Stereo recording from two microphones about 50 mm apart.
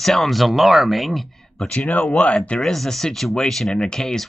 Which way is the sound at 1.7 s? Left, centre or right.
Left.